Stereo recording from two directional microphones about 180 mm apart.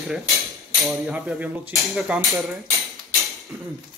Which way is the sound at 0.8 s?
5° right (ahead or behind).